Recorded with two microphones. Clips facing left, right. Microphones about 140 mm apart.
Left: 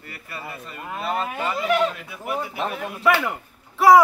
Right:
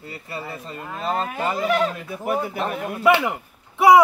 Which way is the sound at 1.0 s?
35° right (ahead or behind).